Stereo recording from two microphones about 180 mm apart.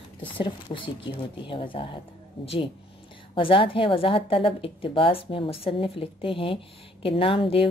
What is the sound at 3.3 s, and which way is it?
A woman's voice, 30° left (ahead or behind).